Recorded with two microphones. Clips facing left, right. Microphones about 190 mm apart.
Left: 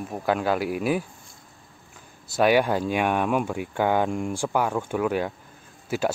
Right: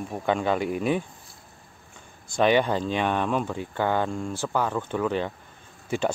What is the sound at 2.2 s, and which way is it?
Speech, 5° left (ahead or behind).